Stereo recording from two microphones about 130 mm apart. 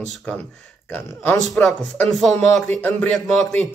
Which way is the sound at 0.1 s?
10° left (ahead or behind).